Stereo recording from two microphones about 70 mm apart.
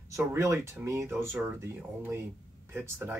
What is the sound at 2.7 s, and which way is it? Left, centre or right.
Speech, right.